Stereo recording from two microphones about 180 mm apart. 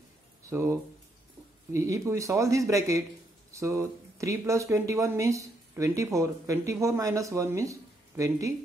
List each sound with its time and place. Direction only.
0.5 s speech: 15° right (ahead or behind)